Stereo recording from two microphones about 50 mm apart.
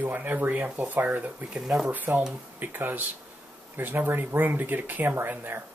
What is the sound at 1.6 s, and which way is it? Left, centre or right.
Speech, centre.